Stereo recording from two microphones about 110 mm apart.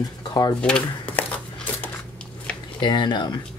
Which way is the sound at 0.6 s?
10° left (ahead or behind).